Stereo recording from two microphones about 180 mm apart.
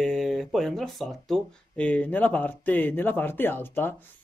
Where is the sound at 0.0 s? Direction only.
Centre (ahead or behind).